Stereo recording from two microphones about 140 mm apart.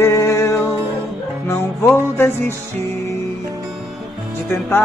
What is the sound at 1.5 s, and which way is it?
Music, 15° left (ahead or behind).